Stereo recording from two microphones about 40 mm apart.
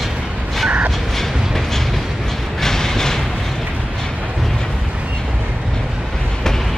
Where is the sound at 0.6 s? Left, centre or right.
Right.